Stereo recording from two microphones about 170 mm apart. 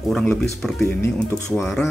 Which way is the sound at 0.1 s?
5° left (ahead or behind).